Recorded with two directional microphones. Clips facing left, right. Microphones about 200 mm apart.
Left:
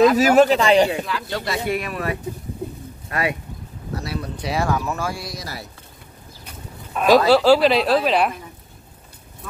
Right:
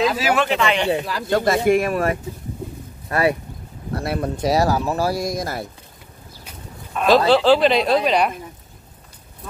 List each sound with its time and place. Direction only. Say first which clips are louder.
0.2 s speech: left 5 dB; 40° left (ahead or behind)
0.8 s speech: right 3 dB; 40° right (ahead or behind)
3.9 s speech: right 5 dB; 55° right (ahead or behind)
6.9 s a woman's voice: left 1 dB; 5° left (ahead or behind)